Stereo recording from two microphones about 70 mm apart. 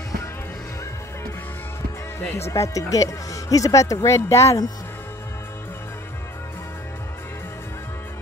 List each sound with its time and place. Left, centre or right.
2.3 s speech: left